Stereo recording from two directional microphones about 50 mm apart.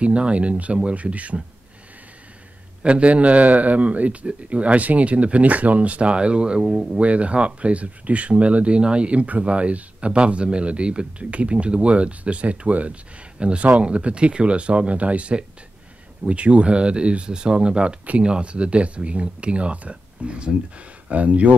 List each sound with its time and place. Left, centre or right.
0.0 s speech: right
2.8 s speech: right
7.0 s speech: right